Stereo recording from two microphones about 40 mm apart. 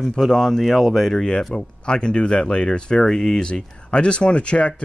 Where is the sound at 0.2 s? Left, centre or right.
Centre.